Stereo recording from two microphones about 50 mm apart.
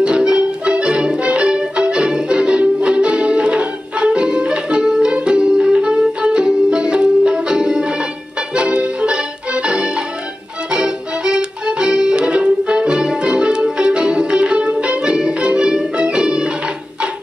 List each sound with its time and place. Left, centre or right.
0.0 s music: centre